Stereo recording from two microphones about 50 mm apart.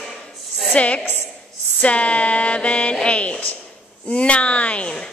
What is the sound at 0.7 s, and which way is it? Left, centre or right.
A man's voice, left.